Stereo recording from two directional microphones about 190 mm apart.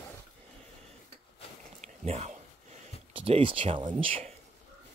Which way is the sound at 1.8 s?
35° right (ahead or behind).